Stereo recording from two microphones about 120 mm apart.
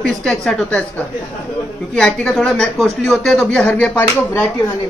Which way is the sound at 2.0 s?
5° left (ahead or behind).